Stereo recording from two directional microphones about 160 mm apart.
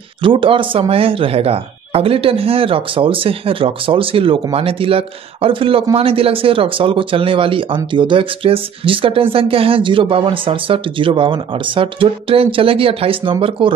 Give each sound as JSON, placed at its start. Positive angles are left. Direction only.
{"t": 0.2, "sound": "speech", "side_deg": -30}